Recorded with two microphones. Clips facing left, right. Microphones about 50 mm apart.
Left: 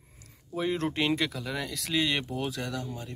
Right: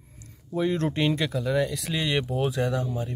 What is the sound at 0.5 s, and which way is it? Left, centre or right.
Speech, centre.